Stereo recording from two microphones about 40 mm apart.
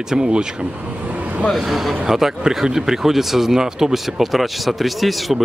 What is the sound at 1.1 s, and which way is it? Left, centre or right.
Vehicle, right.